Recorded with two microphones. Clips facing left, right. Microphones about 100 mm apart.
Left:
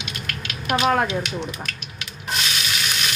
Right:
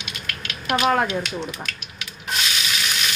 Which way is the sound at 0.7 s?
Centre (ahead or behind).